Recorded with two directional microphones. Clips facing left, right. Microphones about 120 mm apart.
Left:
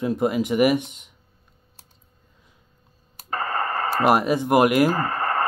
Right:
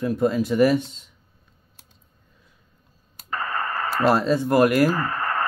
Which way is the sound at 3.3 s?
30° left (ahead or behind).